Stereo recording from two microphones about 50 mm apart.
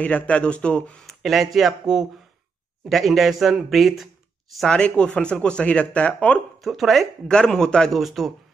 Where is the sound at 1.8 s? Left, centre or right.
Centre.